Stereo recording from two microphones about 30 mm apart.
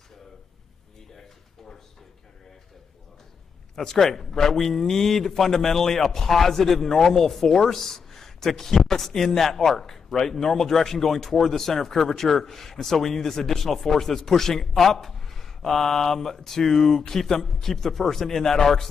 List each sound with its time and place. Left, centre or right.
3.7 s a man's voice: centre